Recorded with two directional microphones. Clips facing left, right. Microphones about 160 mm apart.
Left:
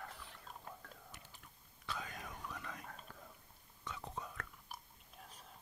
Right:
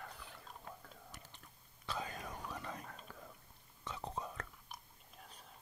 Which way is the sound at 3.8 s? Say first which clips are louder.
Right 3 dB; 35° right (ahead or behind).